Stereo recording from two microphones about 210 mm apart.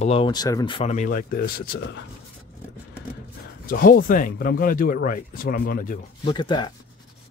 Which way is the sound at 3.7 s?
40° left (ahead or behind).